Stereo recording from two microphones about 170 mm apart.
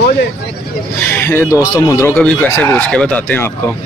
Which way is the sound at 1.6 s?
15° left (ahead or behind).